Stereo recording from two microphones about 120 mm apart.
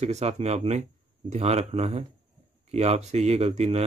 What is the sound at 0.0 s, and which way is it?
Speech, 65° right (ahead or behind).